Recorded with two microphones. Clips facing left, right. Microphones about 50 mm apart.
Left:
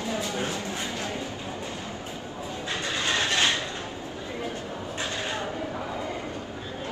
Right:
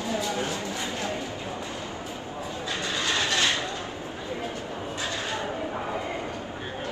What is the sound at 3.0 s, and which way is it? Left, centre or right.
Vehicle, left.